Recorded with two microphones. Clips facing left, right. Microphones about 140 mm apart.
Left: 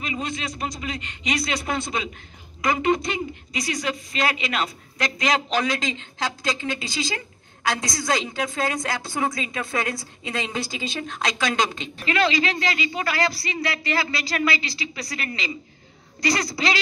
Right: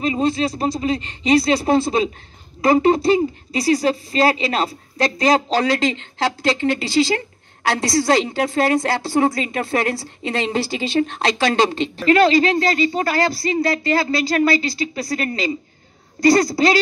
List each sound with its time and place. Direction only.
0.0 s a woman's voice: 30° right (ahead or behind)